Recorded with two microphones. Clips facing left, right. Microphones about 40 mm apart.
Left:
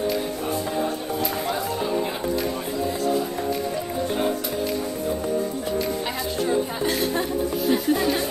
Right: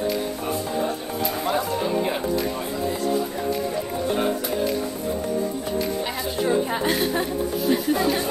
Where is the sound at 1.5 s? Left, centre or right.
Centre.